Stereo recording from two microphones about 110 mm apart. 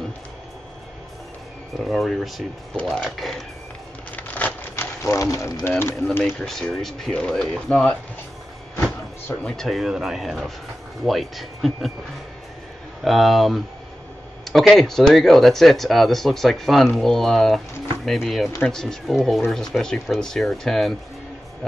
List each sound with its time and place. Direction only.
1.9 s speech: centre (ahead or behind)
2.7 s speech: 10° left (ahead or behind)
4.2 s a sound: 15° left (ahead or behind)
5.0 s speech: 25° left (ahead or behind)
6.2 s speech: 5° left (ahead or behind)
9.4 s speech: 5° left (ahead or behind)
13.0 s speech: centre (ahead or behind)